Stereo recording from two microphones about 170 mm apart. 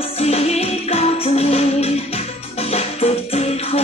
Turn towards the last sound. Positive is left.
turn(degrees=35)  # may be behind; listen again after turning